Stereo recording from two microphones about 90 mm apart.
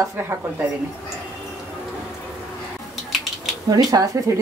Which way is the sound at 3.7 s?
45° right (ahead or behind).